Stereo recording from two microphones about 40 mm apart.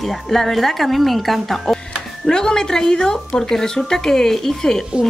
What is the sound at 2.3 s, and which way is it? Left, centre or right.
Speech, centre.